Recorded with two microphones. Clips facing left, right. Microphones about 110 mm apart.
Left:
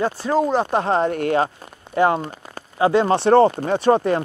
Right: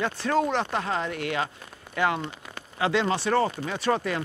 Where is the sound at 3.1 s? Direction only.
60° left (ahead or behind).